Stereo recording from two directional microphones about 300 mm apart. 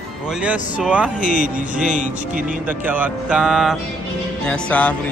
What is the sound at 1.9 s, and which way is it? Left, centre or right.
Speech, right.